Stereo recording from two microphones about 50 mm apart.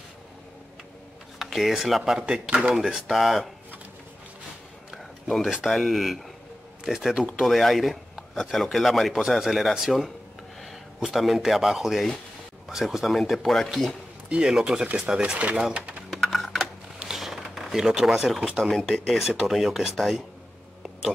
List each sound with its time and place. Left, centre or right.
1.4 s speech: centre
4.9 s a sound: centre
5.7 s speech: centre
11.1 s speech: centre
14.3 s speech: centre
16.1 s typing: centre
17.0 s a sound: centre
17.7 s speech: centre